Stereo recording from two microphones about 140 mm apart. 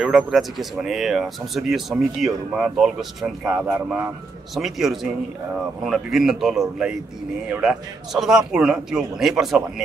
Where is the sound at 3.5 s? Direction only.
15° right (ahead or behind).